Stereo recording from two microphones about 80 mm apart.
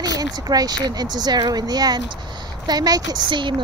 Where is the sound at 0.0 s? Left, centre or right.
Right.